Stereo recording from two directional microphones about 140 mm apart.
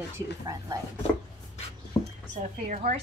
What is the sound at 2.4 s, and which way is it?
Speech, 60° right (ahead or behind).